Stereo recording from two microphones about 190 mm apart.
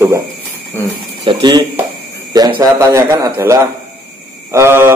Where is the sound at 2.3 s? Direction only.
20° right (ahead or behind).